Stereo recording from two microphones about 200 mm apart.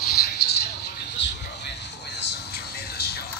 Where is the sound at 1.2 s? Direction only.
65° left (ahead or behind).